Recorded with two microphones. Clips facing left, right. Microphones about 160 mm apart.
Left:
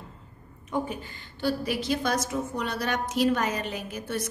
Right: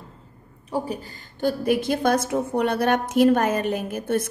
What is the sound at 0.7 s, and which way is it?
A woman's voice, 35° right (ahead or behind).